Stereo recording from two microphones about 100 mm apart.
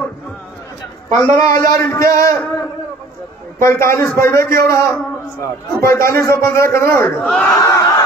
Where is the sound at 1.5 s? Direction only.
35° left (ahead or behind).